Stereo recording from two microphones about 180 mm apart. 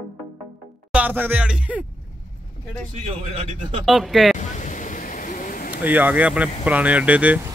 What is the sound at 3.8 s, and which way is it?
Speech, centre (ahead or behind).